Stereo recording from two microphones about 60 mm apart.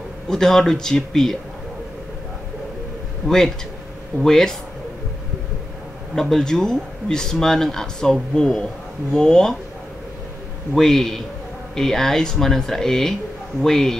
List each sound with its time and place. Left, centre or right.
0.3 s speech: centre
3.3 s speech: centre
6.1 s speech: centre
10.7 s a man's voice: centre